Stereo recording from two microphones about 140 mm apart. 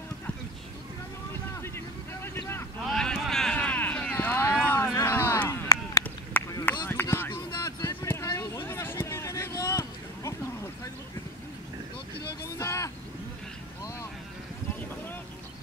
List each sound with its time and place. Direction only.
2.2 s vehicle: 15° left (ahead or behind)
2.8 s run: centre (ahead or behind); by 6.0 s 25° left (ahead or behind)
6.6 s a sound: 15° left (ahead or behind)
12.4 s vehicle: 20° left (ahead or behind)